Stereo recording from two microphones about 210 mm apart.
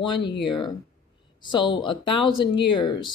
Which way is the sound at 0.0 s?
25° left (ahead or behind).